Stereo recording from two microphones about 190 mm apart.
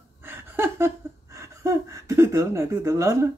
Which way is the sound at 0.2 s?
10° right (ahead or behind).